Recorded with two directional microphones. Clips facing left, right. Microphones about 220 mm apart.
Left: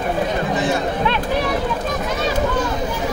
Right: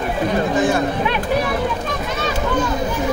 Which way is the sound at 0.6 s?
50° right (ahead or behind).